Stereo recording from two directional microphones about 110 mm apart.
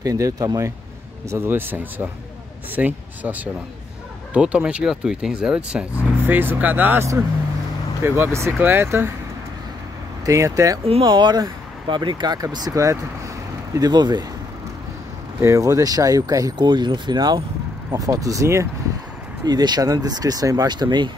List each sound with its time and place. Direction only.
0.0 s speech: 30° right (ahead or behind)
1.3 s speech: 20° right (ahead or behind)
10.2 s speech: 30° right (ahead or behind)
11.1 s speech: 40° right (ahead or behind)
15.4 s speech: 30° right (ahead or behind)
19.4 s speech: 40° right (ahead or behind)